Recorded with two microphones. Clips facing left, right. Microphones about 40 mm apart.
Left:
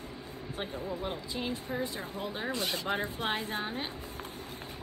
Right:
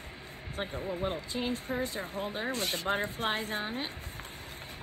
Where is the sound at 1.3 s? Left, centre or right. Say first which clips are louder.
Right 2 dB; centre.